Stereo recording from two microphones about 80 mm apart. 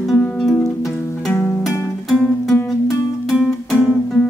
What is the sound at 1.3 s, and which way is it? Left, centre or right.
Music, left.